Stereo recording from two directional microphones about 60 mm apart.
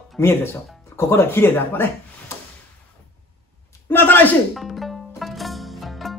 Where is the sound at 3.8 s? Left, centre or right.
Left.